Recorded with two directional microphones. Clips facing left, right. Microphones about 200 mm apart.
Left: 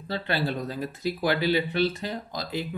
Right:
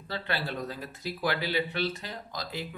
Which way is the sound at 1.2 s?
25° left (ahead or behind).